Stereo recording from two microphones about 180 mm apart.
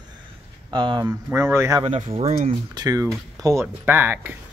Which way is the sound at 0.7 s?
25° right (ahead or behind).